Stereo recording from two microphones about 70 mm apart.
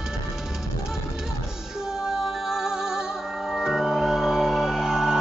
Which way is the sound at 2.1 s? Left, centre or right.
Centre.